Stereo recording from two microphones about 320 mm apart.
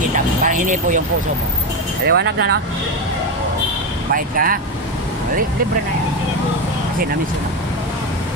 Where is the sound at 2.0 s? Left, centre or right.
Right.